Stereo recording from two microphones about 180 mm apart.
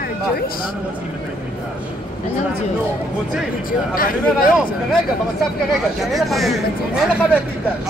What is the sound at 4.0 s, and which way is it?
Speech, 50° left (ahead or behind).